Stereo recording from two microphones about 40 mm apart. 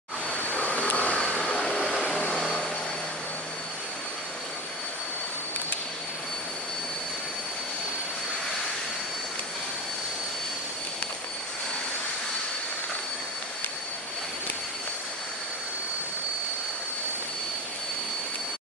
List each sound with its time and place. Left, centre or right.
0.3 s vacuum cleaner: left
1.2 s vacuum cleaner: centre